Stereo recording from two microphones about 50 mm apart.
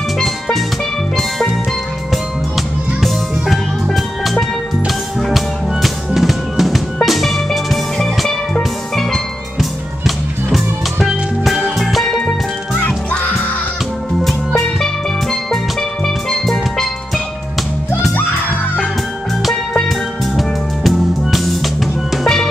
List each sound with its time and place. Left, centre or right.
0.2 s music: centre
2.5 s music: centre
12.2 s music: left
14.2 s music: centre
16.3 s music: centre
20.3 s music: centre
22.1 s drum: centre